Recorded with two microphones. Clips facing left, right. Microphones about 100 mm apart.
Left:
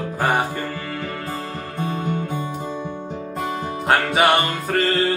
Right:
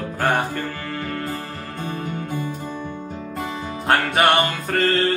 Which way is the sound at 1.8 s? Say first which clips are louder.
Left 4 dB; 20° left (ahead or behind).